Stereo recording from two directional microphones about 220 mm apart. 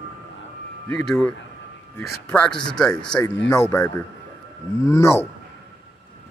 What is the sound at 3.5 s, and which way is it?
Speech, 15° left (ahead or behind).